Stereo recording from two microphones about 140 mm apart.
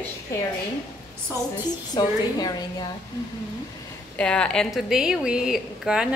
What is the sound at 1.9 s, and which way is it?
Speech, 30° left (ahead or behind).